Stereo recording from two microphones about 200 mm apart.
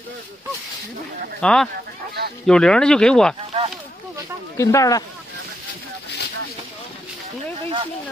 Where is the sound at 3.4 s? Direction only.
30° right (ahead or behind).